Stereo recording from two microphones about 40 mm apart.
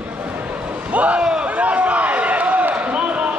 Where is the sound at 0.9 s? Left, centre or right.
Right.